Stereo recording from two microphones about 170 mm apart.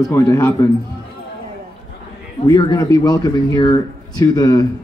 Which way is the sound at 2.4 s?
20° left (ahead or behind).